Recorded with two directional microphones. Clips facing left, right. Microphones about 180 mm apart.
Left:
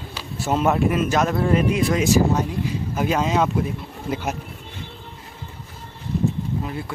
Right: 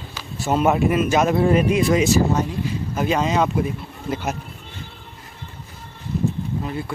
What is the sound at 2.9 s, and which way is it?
Speech, 5° left (ahead or behind).